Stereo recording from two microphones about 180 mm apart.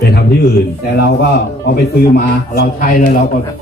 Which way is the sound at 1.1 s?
60° left (ahead or behind).